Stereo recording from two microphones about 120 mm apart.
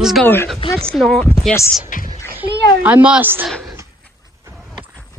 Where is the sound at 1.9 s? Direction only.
90° left.